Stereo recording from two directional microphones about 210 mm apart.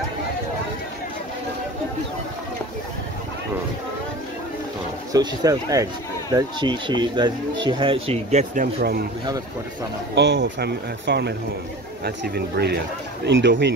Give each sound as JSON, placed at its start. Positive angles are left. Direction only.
{"t": 5.1, "sound": "speech", "side_deg": -15}
{"t": 10.1, "sound": "a man's voice", "side_deg": -55}